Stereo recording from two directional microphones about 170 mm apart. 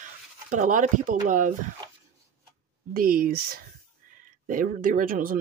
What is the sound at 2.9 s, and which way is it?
Speech, 60° right (ahead or behind).